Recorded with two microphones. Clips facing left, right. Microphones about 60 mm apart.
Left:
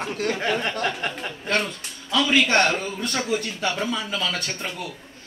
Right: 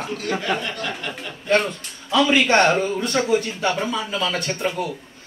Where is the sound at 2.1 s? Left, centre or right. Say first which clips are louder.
Right 3 dB; right.